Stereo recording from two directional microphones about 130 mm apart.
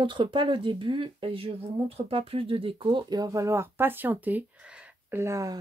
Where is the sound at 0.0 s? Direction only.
40° right (ahead or behind).